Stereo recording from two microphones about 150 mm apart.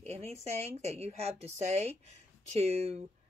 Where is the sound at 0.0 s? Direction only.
45° right (ahead or behind).